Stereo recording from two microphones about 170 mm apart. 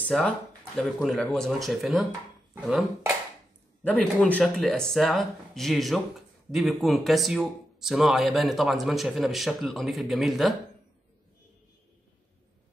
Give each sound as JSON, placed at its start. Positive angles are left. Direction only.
{"t": 0.0, "sound": "speech", "side_deg": 5}